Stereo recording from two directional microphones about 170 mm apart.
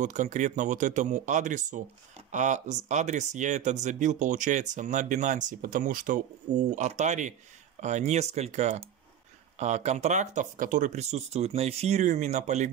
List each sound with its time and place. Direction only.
0.0 s speech: 45° right (ahead or behind)